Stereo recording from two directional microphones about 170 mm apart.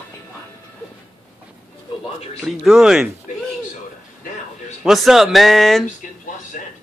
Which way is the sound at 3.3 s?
50° left (ahead or behind).